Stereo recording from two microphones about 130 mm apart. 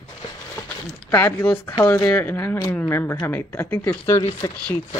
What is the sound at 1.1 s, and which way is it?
Speech, 15° left (ahead or behind).